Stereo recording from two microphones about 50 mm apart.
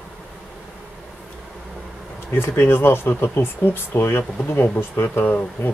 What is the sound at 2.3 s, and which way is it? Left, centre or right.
Speech, left.